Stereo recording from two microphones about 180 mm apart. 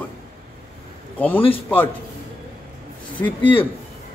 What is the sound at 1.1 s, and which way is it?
Speech, 10° left (ahead or behind).